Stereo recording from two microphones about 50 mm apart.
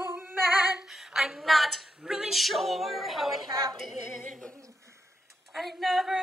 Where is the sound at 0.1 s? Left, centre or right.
Right.